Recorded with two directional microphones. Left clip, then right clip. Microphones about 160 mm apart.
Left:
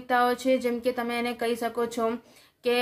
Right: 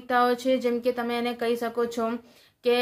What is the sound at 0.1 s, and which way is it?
A woman's voice, 20° right (ahead or behind).